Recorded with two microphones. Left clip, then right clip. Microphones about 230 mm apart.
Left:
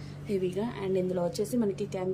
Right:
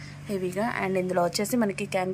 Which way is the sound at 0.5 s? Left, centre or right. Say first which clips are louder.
Right 5 dB; right.